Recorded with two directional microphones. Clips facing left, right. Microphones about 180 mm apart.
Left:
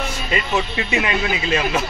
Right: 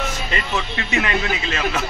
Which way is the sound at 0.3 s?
15° left (ahead or behind).